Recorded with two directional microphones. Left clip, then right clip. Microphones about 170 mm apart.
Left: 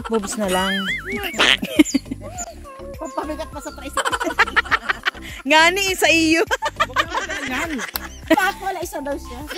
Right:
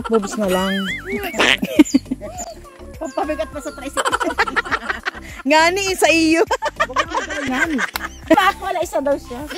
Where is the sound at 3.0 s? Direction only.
80° left.